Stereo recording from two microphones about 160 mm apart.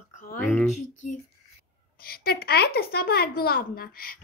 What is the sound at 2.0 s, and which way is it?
Speech, 70° left (ahead or behind).